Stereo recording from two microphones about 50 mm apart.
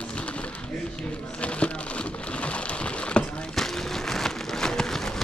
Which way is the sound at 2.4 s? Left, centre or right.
Left.